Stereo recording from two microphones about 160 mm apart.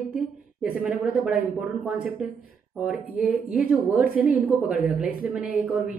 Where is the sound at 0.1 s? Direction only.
5° right (ahead or behind).